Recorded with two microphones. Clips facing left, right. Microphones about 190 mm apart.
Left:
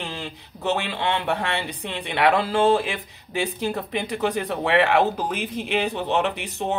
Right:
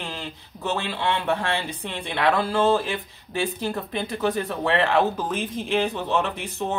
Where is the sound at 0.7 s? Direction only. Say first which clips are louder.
Left 1 dB; 15° left (ahead or behind).